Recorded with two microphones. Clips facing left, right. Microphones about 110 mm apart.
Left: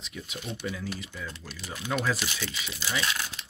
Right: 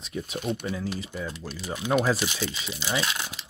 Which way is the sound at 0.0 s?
40° right (ahead or behind).